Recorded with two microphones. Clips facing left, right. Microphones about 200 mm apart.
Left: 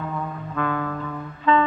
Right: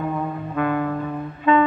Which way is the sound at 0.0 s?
25° right (ahead or behind).